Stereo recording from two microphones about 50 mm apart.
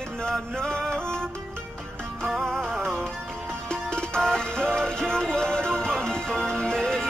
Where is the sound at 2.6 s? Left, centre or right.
Centre.